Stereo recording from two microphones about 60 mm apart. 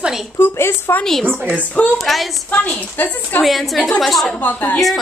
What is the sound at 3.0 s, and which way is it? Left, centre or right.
Speech, left.